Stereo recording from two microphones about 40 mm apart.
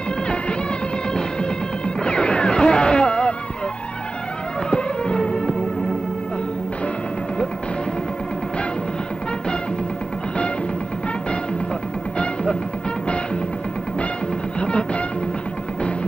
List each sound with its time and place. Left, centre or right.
2.0 s music: left
4.6 s music: left
14.6 s music: left